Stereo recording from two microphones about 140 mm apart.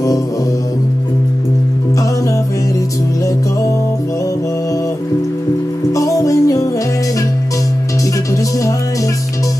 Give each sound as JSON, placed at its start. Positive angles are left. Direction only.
{"t": 5.9, "sound": "music", "side_deg": 25}